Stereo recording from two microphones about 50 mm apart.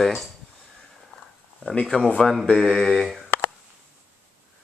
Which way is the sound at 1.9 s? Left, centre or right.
Left.